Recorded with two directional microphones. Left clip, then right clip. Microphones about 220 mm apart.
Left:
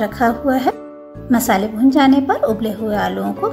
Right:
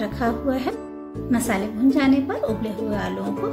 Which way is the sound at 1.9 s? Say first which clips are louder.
Left 7 dB; 20° left (ahead or behind).